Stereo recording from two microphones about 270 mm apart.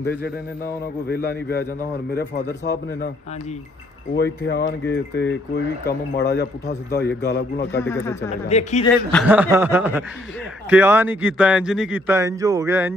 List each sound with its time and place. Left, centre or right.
0.0 s a man's voice: left
4.5 s a man's voice: left
7.7 s speech: centre
8.3 s speech: left
9.1 s a man's voice: centre